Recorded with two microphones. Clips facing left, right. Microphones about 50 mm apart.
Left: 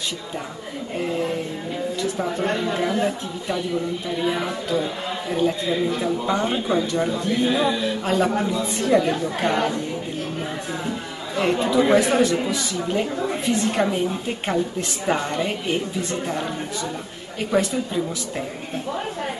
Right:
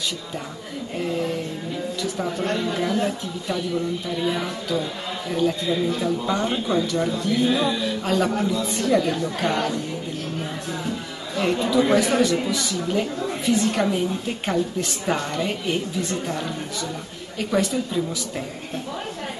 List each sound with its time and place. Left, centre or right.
0.9 s a sound: centre
2.0 s speech: centre
11.3 s speech: centre
17.5 s a woman's voice: centre